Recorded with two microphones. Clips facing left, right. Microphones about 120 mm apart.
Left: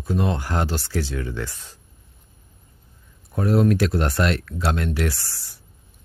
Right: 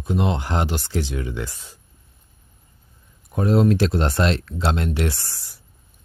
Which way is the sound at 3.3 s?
25° right (ahead or behind).